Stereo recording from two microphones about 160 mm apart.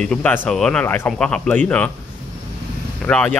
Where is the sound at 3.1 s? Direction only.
10° left (ahead or behind).